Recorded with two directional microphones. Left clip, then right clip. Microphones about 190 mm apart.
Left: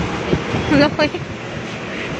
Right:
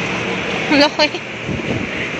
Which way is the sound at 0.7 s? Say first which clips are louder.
Right 2 dB; 10° left (ahead or behind).